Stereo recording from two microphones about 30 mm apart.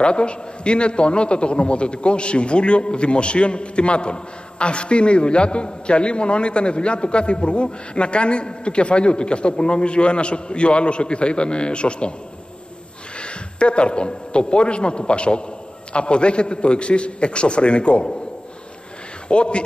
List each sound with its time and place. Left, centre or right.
0.0 s a man's voice: left
13.2 s a man's voice: left
19.2 s speech: left